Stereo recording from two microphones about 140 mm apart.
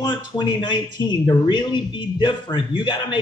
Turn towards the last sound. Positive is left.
turn(degrees=30)  # may be behind; listen again after turning